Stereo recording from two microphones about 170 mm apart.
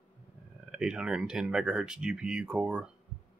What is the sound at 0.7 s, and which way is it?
Speech, 5° right (ahead or behind).